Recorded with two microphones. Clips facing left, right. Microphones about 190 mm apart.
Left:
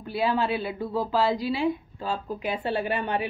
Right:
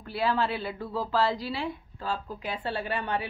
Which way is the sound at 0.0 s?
15° left (ahead or behind).